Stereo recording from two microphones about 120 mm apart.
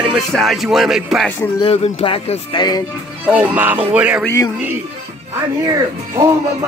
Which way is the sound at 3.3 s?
15° right (ahead or behind).